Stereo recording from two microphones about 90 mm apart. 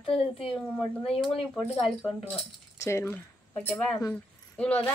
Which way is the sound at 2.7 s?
30° left (ahead or behind).